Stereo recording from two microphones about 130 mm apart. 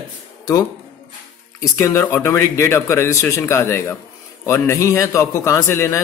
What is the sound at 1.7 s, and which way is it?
A man's voice, 20° left (ahead or behind).